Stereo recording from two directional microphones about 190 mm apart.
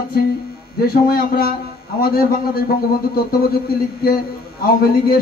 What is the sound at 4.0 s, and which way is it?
A man's voice, 50° left (ahead or behind).